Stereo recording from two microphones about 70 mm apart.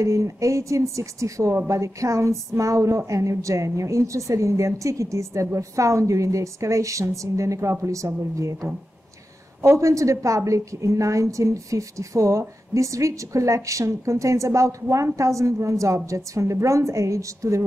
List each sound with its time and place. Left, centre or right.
0.0 s a woman's voice: right
9.6 s a woman's voice: right